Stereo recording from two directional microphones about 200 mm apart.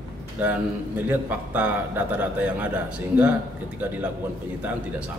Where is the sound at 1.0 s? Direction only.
10° right (ahead or behind).